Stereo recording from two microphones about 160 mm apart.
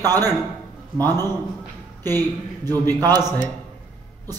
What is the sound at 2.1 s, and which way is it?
Speech, 25° right (ahead or behind).